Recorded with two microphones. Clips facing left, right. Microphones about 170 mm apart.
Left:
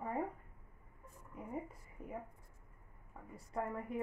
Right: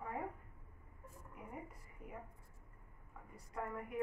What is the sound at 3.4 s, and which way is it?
Speech, 30° left (ahead or behind).